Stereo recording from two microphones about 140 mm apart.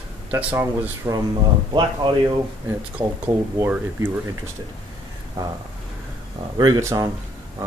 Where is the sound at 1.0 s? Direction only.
25° right (ahead or behind).